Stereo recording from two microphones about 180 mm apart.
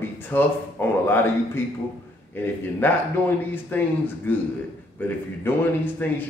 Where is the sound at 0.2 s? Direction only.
10° left (ahead or behind).